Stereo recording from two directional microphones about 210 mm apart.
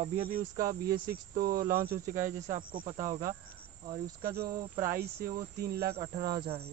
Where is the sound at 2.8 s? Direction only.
35° right (ahead or behind).